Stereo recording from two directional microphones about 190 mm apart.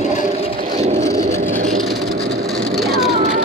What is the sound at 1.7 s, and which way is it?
Vehicle, centre (ahead or behind).